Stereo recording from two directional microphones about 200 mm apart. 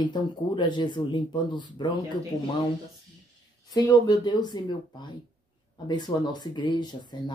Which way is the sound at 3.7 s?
20° left (ahead or behind).